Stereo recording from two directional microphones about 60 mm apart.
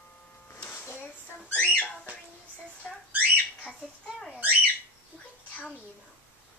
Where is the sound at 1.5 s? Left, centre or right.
Left.